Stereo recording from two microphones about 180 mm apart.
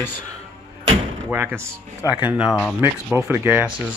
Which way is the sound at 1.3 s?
10° right (ahead or behind).